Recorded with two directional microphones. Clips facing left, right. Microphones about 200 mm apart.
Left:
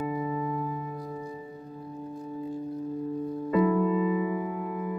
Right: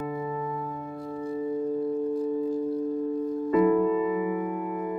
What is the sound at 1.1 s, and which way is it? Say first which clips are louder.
Singing bowl: right 6 dB; 55° right (ahead or behind).